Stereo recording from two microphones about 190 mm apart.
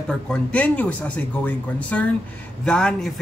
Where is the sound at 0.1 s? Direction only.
5° left (ahead or behind).